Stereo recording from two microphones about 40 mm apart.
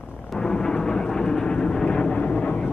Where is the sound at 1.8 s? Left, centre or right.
Left.